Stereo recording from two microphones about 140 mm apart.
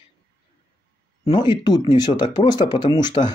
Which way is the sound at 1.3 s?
35° left (ahead or behind).